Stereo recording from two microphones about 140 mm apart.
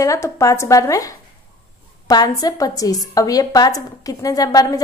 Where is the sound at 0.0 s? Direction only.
25° left (ahead or behind).